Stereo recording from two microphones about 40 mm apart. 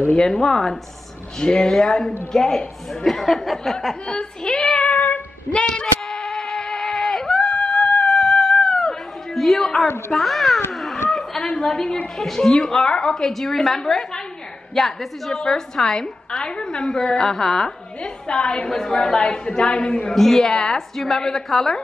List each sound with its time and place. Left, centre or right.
0.1 s a woman's voice: centre
4.1 s a woman's voice: centre
4.8 s a sound: left
5.5 s speech: left
6.2 s a sound: centre
10.1 s a woman's voice: centre
10.7 s a sound: centre
11.6 s a woman's voice: centre
18.0 s a woman's voice: left
20.1 s a woman's voice: centre